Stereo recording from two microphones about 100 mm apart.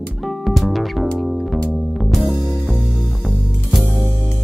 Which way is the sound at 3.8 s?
20° left (ahead or behind).